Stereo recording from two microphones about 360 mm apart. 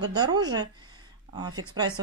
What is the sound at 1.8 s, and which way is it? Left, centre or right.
Speech, centre.